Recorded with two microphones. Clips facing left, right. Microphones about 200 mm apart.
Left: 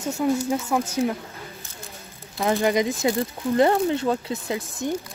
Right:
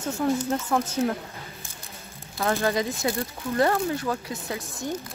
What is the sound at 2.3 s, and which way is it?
A woman's voice, 15° left (ahead or behind).